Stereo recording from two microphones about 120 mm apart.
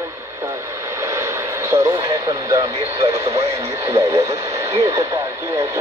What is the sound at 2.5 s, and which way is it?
Speech, 25° right (ahead or behind).